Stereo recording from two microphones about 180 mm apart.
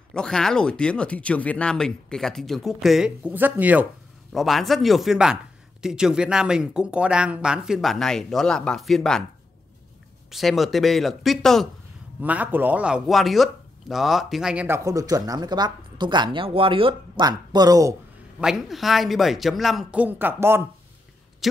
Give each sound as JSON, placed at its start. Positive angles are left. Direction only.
{"t": 0.1, "sound": "speech", "side_deg": 5}
{"t": 10.3, "sound": "speech", "side_deg": 0}
{"t": 18.4, "sound": "speech", "side_deg": 0}